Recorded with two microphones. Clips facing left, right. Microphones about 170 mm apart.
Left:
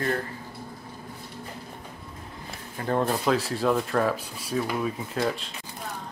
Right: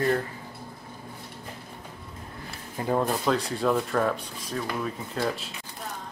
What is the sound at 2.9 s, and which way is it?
Speech, centre (ahead or behind).